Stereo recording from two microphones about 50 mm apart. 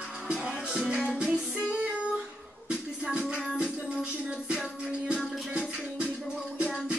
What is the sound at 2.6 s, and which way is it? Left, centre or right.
Music, right.